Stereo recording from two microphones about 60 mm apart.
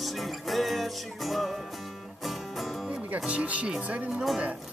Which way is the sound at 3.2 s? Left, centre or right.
Right.